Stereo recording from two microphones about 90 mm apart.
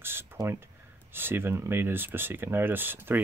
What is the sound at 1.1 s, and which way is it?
Speech, 25° right (ahead or behind).